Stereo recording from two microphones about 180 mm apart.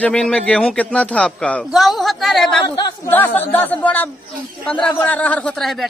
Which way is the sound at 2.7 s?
15° left (ahead or behind).